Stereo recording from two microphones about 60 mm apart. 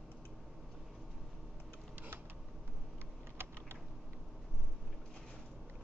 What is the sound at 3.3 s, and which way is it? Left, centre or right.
Typing, right.